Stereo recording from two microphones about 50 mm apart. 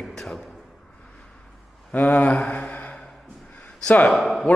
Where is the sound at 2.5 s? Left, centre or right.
Left.